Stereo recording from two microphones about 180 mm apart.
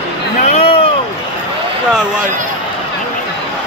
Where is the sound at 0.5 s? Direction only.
30° left (ahead or behind).